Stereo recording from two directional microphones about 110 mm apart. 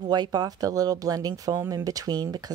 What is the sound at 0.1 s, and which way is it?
Speech, 40° right (ahead or behind).